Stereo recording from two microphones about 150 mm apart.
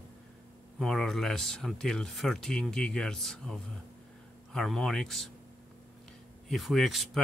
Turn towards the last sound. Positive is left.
turn(degrees=0)  # may be behind; listen again after turning